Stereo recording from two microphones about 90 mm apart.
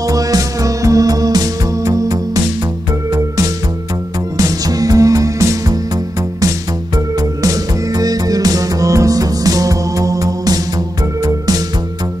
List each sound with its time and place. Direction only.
0.0 s music: 40° right (ahead or behind)
7.2 s music: 40° right (ahead or behind)